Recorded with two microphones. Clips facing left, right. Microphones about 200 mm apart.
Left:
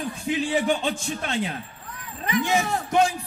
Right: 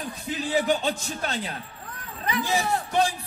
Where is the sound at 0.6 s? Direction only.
40° right (ahead or behind).